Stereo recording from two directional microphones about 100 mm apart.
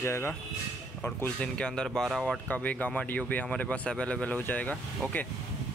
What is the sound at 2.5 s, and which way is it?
Speech, 15° left (ahead or behind).